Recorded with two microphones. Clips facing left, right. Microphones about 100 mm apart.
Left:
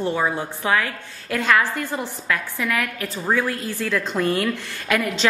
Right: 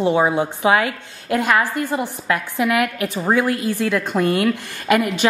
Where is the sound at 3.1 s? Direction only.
15° right (ahead or behind).